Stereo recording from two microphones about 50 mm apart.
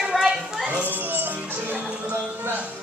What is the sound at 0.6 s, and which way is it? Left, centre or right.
Speech, right.